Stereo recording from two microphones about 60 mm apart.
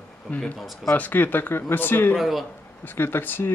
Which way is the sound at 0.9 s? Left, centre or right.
Left.